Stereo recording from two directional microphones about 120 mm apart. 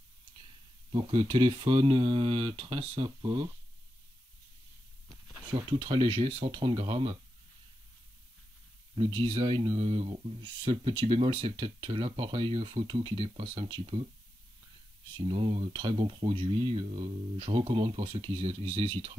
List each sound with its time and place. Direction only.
1.2 s speech: 45° right (ahead or behind)
3.2 s speech: 35° right (ahead or behind)
5.5 s speech: 40° right (ahead or behind)
8.9 s speech: 45° right (ahead or behind)
9.7 s speech: 65° right (ahead or behind)
10.4 s speech: 45° right (ahead or behind)
15.1 s speech: 45° right (ahead or behind)